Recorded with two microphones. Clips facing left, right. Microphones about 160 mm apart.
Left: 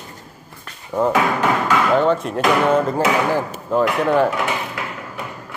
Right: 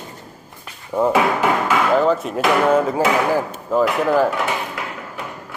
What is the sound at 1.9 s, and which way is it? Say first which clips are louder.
Speech: even; centre (ahead or behind).